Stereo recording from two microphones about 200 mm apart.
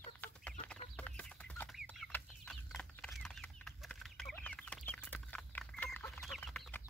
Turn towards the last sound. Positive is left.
turn(degrees=5)  # may be behind; listen again after turning